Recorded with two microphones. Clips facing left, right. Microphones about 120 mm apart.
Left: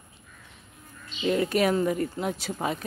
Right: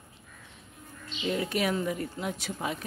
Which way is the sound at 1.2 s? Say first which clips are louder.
Left 5 dB; 50° left (ahead or behind).